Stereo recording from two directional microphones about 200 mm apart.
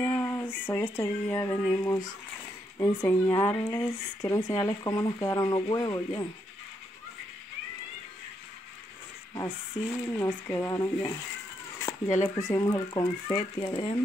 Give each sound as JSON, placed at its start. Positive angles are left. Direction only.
{"t": 0.0, "sound": "speech", "side_deg": 10}
{"t": 9.3, "sound": "speech", "side_deg": 10}
{"t": 12.2, "sound": "speech", "side_deg": 15}